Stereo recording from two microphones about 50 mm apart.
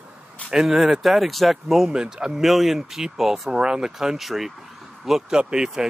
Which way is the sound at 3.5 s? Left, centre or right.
Centre.